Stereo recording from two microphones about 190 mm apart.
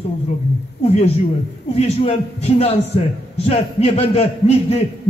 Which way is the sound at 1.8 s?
35° left (ahead or behind).